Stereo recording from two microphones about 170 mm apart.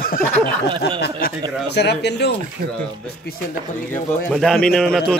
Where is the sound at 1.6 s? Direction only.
75° left (ahead or behind).